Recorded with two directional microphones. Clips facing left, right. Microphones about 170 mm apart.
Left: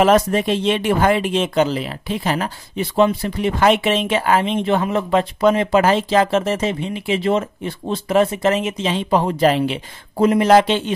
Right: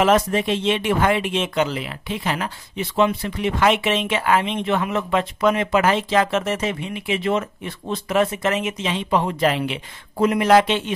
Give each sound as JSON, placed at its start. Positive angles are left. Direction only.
{"t": 0.0, "sound": "speech", "side_deg": 40}